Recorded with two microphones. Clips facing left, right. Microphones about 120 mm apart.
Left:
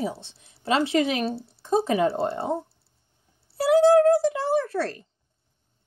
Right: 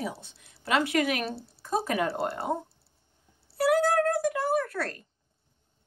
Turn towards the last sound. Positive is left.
turn(degrees=30)  # may be behind; listen again after turning